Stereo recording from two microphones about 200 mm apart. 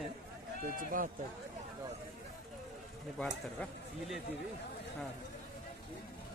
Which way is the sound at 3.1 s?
Centre (ahead or behind).